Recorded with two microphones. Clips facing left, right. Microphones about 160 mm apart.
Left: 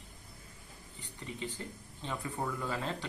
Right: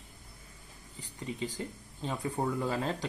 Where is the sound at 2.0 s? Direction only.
35° right (ahead or behind).